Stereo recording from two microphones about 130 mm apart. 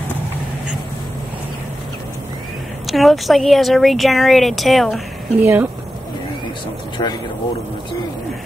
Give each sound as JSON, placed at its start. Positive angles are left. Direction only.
{"t": 2.9, "sound": "speech", "side_deg": 0}
{"t": 5.4, "sound": "speech", "side_deg": -15}
{"t": 7.0, "sound": "speech", "side_deg": 35}